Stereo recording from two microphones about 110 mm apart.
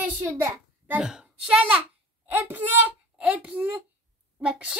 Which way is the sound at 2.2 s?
20° right (ahead or behind).